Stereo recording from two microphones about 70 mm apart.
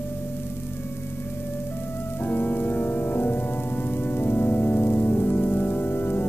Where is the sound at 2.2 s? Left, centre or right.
Left.